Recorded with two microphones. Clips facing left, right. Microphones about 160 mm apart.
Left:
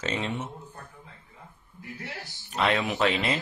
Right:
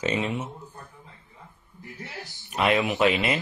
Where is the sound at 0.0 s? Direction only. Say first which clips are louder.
Right 4 dB; 10° right (ahead or behind).